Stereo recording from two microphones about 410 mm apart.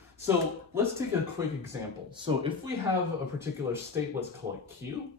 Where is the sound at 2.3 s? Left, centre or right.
Centre.